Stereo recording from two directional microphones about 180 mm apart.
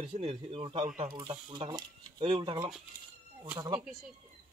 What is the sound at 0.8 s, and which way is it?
Speech, 45° right (ahead or behind).